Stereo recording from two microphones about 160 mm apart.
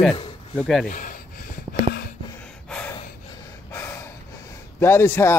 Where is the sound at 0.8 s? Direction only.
55° left (ahead or behind).